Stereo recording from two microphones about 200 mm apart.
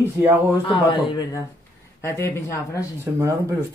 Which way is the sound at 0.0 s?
10° right (ahead or behind).